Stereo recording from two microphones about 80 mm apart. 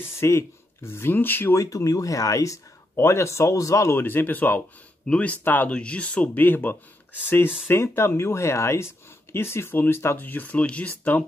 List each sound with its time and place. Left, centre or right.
0.2 s speech: left
1.5 s speech: left
3.9 s speech: left